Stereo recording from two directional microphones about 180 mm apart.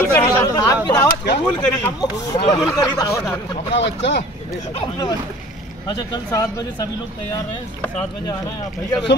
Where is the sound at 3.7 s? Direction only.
80° left.